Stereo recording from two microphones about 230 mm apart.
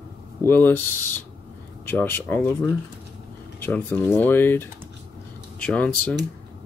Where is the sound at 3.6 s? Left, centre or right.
Centre.